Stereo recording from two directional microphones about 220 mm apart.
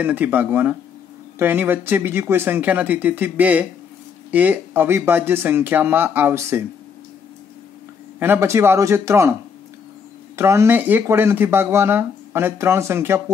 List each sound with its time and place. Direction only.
0.0 s speech: 10° right (ahead or behind)
8.2 s speech: 10° right (ahead or behind)
10.3 s speech: 10° right (ahead or behind)